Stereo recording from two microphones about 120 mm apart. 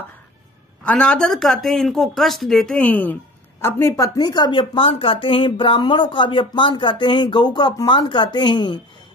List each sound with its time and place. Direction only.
0.8 s a woman's voice: 10° left (ahead or behind); by 8.8 s 40° left (ahead or behind)